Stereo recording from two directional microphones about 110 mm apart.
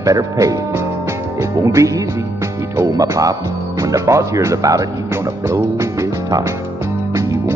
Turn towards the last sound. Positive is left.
turn(degrees=-30)  # may be behind; listen again after turning